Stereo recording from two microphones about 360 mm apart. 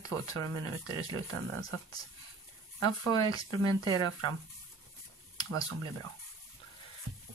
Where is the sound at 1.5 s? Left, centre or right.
Centre.